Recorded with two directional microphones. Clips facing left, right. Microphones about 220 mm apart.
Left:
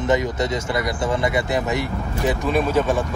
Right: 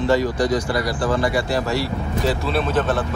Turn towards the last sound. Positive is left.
turn(degrees=10)  # may be behind; listen again after turning